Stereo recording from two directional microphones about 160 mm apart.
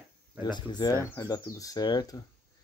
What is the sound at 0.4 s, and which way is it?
Speech, 25° left (ahead or behind).